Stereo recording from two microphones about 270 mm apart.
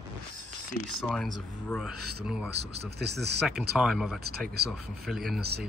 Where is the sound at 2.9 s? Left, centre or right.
Right.